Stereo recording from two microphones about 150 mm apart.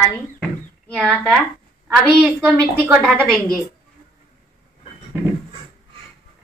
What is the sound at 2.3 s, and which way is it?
A woman's voice, centre (ahead or behind).